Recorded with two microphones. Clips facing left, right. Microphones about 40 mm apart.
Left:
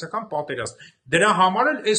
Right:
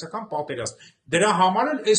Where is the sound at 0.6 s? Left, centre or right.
Centre.